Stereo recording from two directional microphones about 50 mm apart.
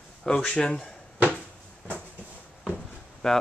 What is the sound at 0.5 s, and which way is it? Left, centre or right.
Speech, left.